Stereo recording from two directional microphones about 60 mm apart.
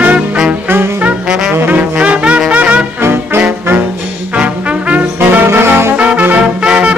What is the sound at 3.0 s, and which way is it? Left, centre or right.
Music, right.